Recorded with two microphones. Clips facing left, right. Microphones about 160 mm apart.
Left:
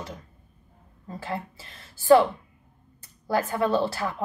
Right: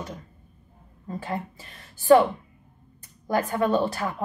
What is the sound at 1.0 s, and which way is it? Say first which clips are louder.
A woman's voice: right 2 dB; 15° right (ahead or behind).